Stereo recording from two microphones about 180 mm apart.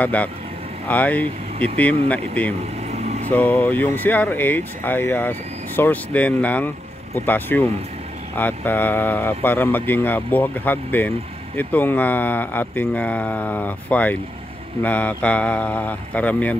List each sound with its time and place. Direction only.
0.0 s speech: 10° left (ahead or behind)
2.9 s vehicle: 40° right (ahead or behind)
3.3 s speech: 10° left (ahead or behind)